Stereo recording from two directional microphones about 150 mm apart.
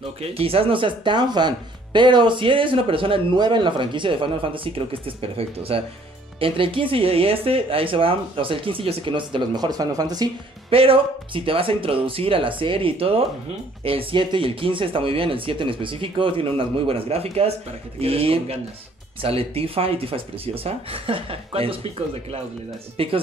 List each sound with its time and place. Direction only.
0.0 s speech: 40° right (ahead or behind)
10.7 s speech: 40° right (ahead or behind)
23.0 s speech: 40° right (ahead or behind)